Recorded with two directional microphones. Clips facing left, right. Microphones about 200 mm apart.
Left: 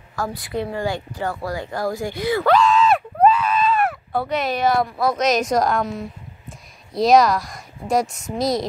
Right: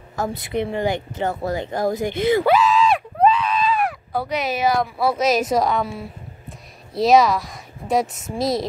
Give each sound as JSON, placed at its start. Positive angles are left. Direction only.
{"t": 0.1, "sound": "speech", "side_deg": -20}
{"t": 2.4, "sound": "a woman's voice", "side_deg": -5}